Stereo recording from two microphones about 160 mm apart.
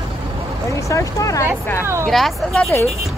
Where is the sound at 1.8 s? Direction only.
15° right (ahead or behind).